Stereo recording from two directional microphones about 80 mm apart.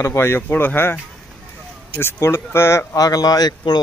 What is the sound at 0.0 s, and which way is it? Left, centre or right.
Speech, left.